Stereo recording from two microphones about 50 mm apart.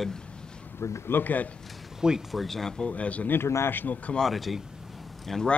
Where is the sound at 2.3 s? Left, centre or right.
Centre.